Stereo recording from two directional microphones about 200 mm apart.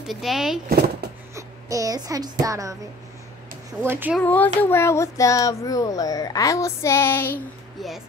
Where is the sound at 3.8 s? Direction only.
10° right (ahead or behind).